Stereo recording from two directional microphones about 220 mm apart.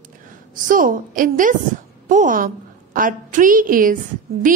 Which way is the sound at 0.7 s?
40° right (ahead or behind).